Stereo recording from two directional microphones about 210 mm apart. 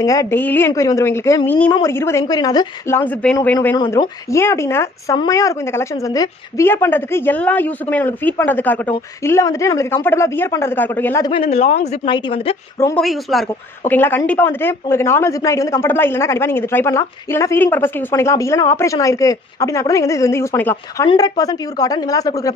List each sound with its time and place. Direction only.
0.0 s a woman's voice: 15° left (ahead or behind)
3.0 s a woman's voice: 5° left (ahead or behind)
11.3 s a woman's voice: 30° left (ahead or behind)
13.0 s a woman's voice: centre (ahead or behind); by 22.5 s 15° left (ahead or behind)